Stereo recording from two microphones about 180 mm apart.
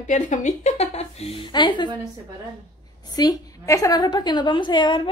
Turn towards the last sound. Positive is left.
turn(degrees=25)  # may be behind; listen again after turning